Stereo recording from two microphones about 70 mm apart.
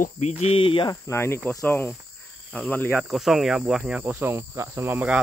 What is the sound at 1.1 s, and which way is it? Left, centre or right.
Speech, left.